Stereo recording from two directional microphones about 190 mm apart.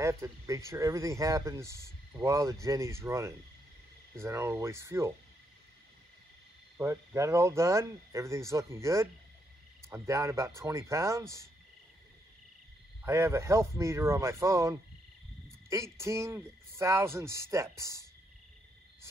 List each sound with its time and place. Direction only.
0.0 s speech: 15° right (ahead or behind)
6.8 s speech: 15° right (ahead or behind)
13.0 s speech: 15° right (ahead or behind)